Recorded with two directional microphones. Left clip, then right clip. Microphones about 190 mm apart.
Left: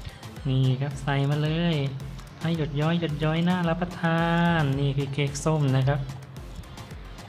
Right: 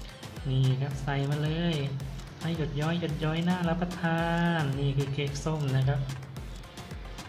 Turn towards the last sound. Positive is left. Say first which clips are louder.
# left 7 dB
turn(degrees=30)  # may be behind; listen again after turning